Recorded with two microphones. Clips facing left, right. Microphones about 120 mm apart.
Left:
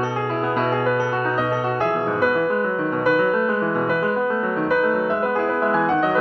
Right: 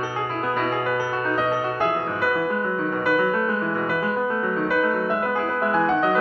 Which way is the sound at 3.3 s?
10° left (ahead or behind).